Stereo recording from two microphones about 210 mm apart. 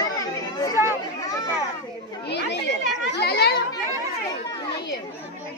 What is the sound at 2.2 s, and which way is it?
Children playing, 55° left (ahead or behind).